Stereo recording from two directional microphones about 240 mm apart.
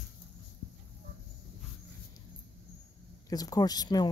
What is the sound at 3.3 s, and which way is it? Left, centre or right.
Speech, centre.